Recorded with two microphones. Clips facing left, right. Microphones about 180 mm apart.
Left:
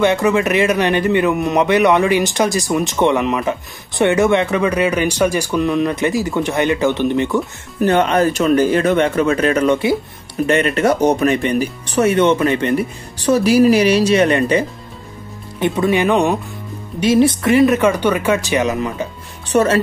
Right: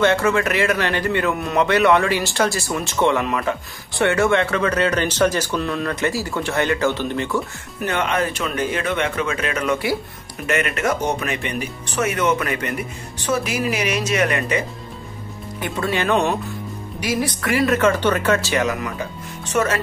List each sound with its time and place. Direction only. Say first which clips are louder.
0.0 s a man's voice: left 3 dB; 15° left (ahead or behind)
7.8 s speech: left 8 dB; 35° left (ahead or behind)
15.6 s a man's voice: left 7 dB; 20° left (ahead or behind)
17.0 s speech: left 10 dB; 25° left (ahead or behind)
19.5 s speech: left 6 dB; 35° left (ahead or behind)